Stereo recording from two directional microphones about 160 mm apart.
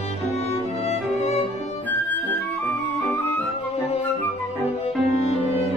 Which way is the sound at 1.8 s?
10° left (ahead or behind).